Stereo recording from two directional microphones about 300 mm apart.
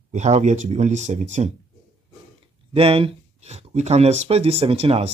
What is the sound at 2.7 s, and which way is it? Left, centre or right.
Speech, centre.